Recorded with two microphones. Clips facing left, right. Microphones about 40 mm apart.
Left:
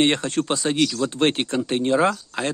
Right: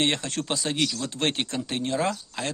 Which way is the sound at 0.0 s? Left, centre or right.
Centre.